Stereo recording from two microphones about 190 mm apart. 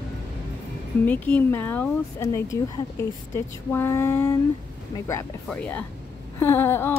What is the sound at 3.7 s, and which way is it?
Speech, 15° left (ahead or behind).